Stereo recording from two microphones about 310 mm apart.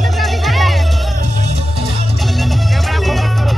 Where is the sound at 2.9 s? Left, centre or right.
Centre.